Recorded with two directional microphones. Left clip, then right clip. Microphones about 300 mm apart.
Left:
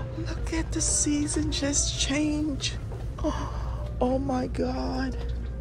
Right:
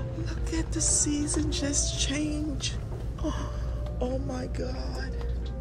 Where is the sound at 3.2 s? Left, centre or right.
Centre.